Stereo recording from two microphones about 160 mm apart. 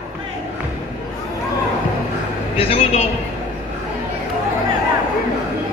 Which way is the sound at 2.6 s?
35° left (ahead or behind).